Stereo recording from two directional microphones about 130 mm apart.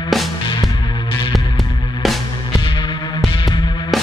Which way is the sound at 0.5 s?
35° left (ahead or behind).